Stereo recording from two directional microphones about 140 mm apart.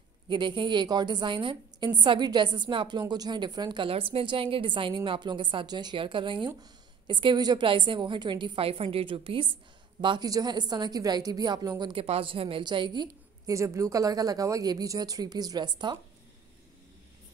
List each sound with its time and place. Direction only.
0.3 s a woman's voice: 35° right (ahead or behind)
11.9 s a woman's voice: 40° right (ahead or behind)